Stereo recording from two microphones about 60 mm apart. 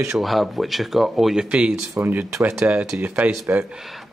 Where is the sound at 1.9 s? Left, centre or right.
Right.